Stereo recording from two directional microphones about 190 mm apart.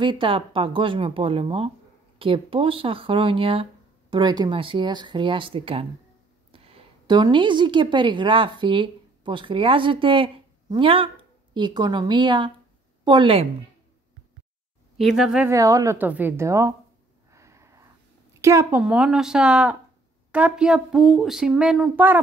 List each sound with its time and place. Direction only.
0.0 s a woman's voice: 25° right (ahead or behind)
15.0 s speech: centre (ahead or behind)
15.5 s a woman's voice: 15° right (ahead or behind)
17.3 s snort: 15° right (ahead or behind)
18.4 s a woman's voice: 15° right (ahead or behind)
18.8 s speech: 5° right (ahead or behind)